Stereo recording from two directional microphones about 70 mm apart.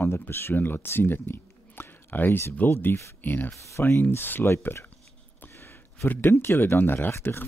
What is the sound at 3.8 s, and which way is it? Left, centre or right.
Speech, left.